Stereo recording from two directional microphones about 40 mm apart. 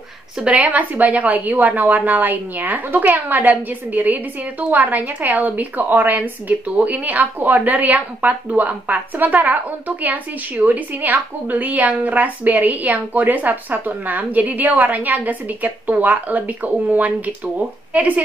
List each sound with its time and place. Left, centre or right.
0.4 s a woman's voice: right